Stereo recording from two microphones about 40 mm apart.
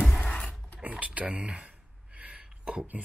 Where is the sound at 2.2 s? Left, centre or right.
Right.